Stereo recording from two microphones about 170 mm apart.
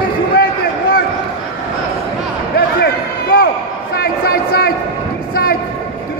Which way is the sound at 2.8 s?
70° left (ahead or behind).